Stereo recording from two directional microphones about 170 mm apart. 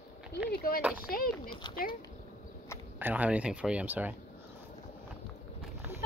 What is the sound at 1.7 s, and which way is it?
Speech, 25° left (ahead or behind).